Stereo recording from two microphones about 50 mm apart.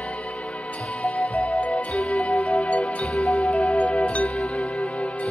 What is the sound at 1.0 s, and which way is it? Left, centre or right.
Music, centre.